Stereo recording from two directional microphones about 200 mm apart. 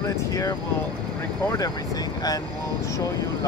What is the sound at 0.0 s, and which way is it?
Vehicle, 15° left (ahead or behind).